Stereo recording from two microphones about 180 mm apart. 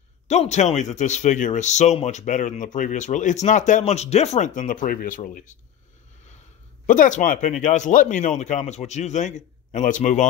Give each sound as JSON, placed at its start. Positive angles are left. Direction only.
{"t": 0.3, "sound": "speech", "side_deg": 40}
{"t": 6.9, "sound": "speech", "side_deg": 45}